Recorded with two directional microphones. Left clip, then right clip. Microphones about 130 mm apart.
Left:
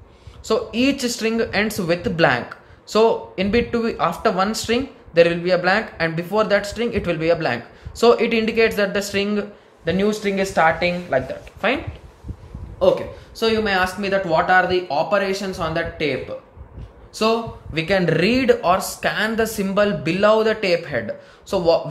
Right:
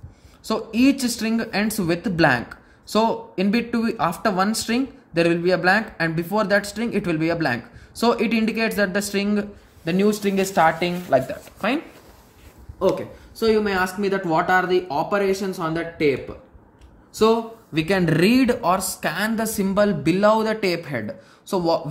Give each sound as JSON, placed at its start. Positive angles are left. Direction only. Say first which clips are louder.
{"t": 0.5, "sound": "speech", "louder": "left 1 dB", "side_deg": -35}
{"t": 12.8, "sound": "speech", "louder": "left 4 dB", "side_deg": -25}